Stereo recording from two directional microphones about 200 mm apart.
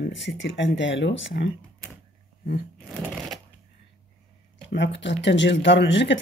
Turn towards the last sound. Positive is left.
turn(degrees=65)  # may be behind; listen again after turning